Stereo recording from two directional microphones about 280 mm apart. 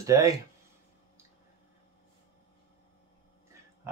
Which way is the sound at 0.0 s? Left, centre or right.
Centre.